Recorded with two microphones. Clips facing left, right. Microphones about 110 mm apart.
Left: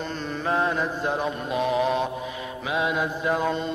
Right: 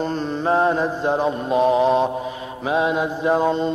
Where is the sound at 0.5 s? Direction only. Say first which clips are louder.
Right 6 dB; 35° right (ahead or behind).